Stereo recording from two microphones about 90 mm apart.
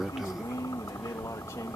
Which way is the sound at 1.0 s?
35° left (ahead or behind).